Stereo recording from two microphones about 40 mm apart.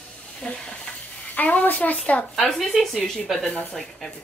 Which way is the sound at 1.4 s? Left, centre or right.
Left.